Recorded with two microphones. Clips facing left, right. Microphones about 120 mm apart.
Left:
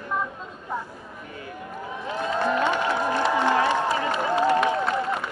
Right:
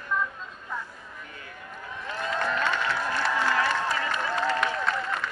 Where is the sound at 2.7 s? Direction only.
20° left (ahead or behind).